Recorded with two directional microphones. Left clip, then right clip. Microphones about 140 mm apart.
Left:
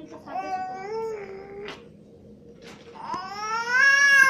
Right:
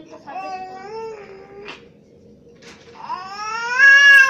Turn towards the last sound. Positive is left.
turn(degrees=20)  # may be behind; listen again after turning